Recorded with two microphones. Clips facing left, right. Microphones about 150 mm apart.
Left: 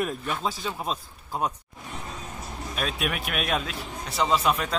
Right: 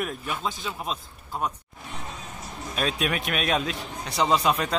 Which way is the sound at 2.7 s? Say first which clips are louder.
Right 3 dB; 5° left (ahead or behind).